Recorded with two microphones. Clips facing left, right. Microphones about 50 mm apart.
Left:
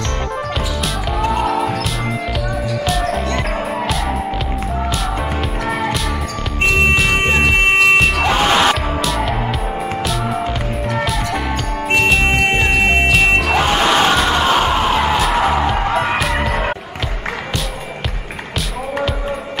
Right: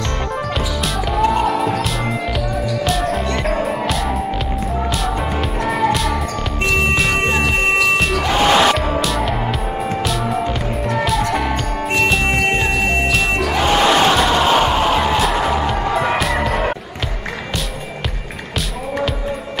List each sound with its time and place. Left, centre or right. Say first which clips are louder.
1.1 s music: right 1 dB; centre
2.8 s music: left 1 dB; centre
5.7 s music: right 4 dB; centre
7.2 s music: left 3 dB; left
8.4 s music: right 4 dB; centre
12.6 s music: left 3 dB; left
13.7 s music: right 4 dB; centre